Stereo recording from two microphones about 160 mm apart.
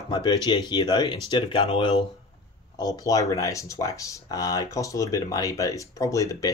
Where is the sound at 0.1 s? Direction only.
25° left (ahead or behind).